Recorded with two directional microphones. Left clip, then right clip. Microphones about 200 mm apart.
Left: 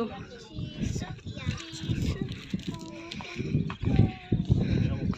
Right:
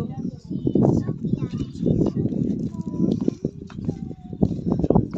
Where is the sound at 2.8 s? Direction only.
30° right (ahead or behind).